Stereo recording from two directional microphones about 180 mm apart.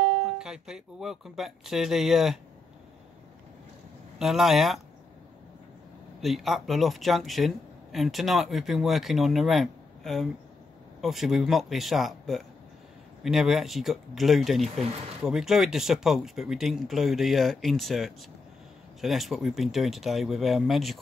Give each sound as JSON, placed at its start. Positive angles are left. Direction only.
{"t": 0.4, "sound": "speech", "side_deg": -5}
{"t": 4.2, "sound": "speech", "side_deg": 0}
{"t": 6.2, "sound": "speech", "side_deg": 0}